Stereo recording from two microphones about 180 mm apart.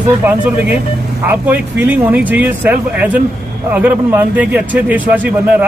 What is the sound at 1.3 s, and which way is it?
Speech, 10° right (ahead or behind).